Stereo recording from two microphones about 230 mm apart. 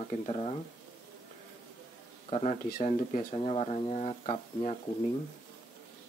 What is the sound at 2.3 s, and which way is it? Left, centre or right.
Speech, left.